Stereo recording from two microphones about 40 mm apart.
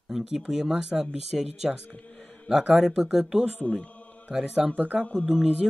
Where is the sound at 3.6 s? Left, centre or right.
Left.